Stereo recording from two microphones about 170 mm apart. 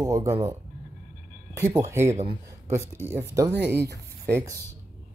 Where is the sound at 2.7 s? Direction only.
15° right (ahead or behind).